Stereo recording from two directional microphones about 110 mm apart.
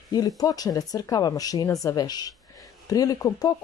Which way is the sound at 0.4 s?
35° left (ahead or behind).